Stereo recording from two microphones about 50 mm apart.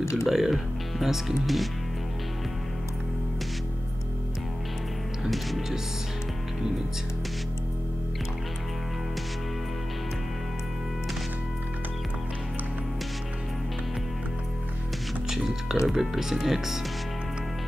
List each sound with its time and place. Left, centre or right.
0.0 s speech: left
0.3 s speech: centre
5.2 s speech: centre
15.2 s music: centre
15.9 s speech: centre